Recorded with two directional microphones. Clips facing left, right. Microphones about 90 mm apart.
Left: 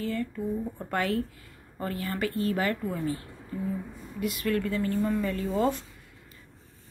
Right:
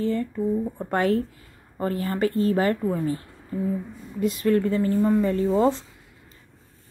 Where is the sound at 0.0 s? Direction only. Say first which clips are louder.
Right 6 dB; 30° right (ahead or behind).